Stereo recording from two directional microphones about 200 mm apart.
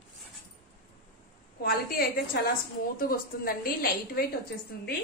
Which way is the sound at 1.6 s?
50° left (ahead or behind).